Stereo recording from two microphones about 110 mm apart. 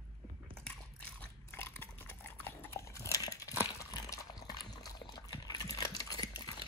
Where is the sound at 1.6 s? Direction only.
20° left (ahead or behind).